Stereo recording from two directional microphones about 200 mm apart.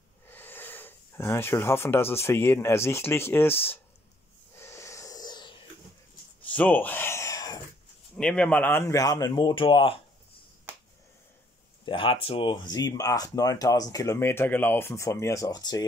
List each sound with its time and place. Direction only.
0.3 s speech: 10° left (ahead or behind)
4.6 s wheeze: 15° left (ahead or behind)
6.4 s gasp: 10° left (ahead or behind)
8.2 s speech: 5° left (ahead or behind); by 9.9 s 25° left (ahead or behind)
11.8 s speech: 25° left (ahead or behind)